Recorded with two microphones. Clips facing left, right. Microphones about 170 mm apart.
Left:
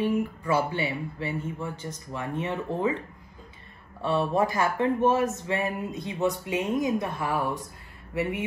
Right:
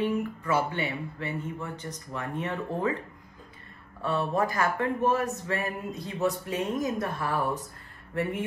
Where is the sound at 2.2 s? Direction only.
25° left (ahead or behind).